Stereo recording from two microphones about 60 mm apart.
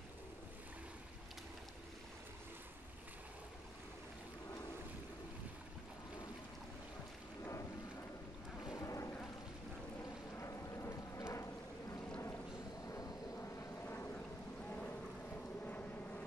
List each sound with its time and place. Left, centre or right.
8.7 s a sound: left
10.4 s boat: left
12.8 s vehicle: left
13.4 s vehicle: left
14.7 s boat: left
15.6 s vehicle: left